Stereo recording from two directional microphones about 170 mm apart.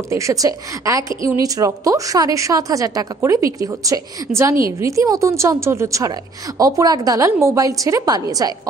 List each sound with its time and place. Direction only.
0.1 s a woman's voice: 20° right (ahead or behind)